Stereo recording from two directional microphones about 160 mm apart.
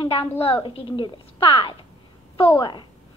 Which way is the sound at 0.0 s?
35° left (ahead or behind).